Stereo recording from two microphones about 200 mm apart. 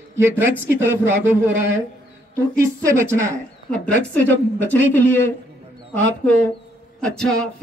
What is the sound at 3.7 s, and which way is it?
Speech, 10° left (ahead or behind).